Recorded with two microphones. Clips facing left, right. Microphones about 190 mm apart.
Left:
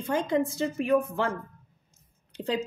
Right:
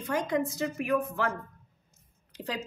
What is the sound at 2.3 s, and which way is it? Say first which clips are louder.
Speech: left 6 dB; 25° left (ahead or behind).